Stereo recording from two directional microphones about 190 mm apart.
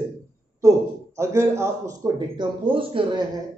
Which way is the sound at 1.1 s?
15° right (ahead or behind).